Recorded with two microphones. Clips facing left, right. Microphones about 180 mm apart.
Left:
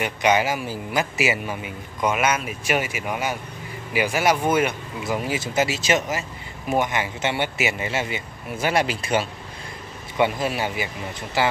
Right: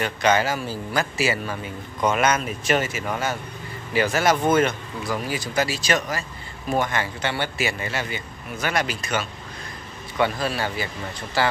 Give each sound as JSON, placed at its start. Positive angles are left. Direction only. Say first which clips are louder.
{"t": 0.0, "sound": "a man's voice", "louder": "even", "side_deg": 15}
{"t": 5.0, "sound": "a man's voice", "louder": "left 2 dB", "side_deg": 25}